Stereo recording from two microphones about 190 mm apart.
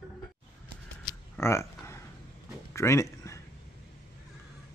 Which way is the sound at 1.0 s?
15° left (ahead or behind).